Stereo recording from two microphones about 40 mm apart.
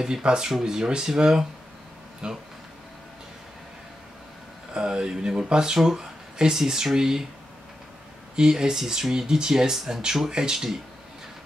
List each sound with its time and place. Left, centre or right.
0.0 s speech: centre
4.7 s speech: right
8.4 s speech: centre